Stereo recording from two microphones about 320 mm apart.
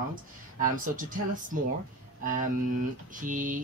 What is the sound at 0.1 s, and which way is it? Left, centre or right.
Speech, right.